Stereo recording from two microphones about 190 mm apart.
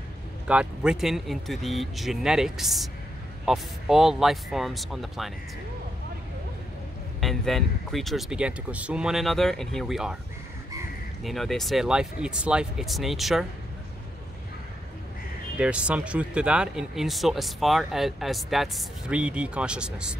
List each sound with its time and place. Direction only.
0.5 s speech: 5° right (ahead or behind)
7.2 s speech: centre (ahead or behind)
11.2 s speech: centre (ahead or behind)
15.6 s speech: 5° right (ahead or behind)